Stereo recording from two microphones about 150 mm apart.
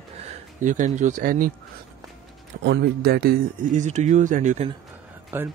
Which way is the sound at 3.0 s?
90° right.